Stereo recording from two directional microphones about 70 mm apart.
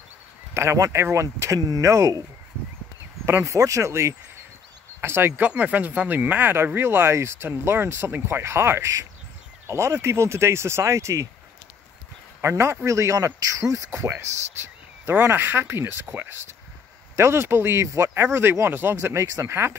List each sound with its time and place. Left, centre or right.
0.6 s speech: right
3.3 s speech: right
5.0 s speech: right
12.4 s speech: right
13.9 s speech: right